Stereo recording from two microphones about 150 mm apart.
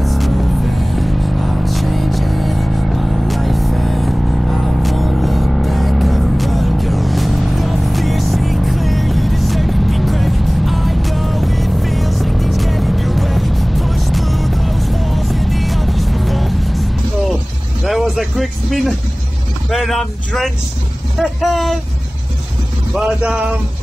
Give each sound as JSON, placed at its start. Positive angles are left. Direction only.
{"t": 0.0, "sound": "music", "side_deg": 0}
{"t": 17.8, "sound": "vehicle", "side_deg": 0}
{"t": 22.9, "sound": "a sound", "side_deg": -5}